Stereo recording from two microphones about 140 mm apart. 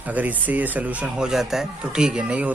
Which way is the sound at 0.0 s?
10° right (ahead or behind).